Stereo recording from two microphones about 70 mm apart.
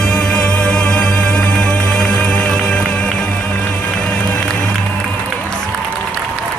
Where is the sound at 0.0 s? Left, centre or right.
Centre.